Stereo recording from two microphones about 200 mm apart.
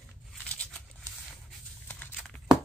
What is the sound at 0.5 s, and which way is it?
Crumpling, 5° left (ahead or behind).